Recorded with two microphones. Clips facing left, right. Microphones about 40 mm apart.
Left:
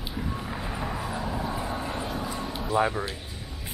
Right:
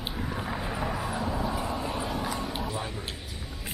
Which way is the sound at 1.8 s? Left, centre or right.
Centre.